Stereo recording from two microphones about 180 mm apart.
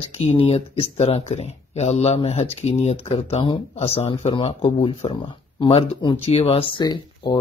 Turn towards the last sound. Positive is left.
turn(degrees=25)  # may be behind; listen again after turning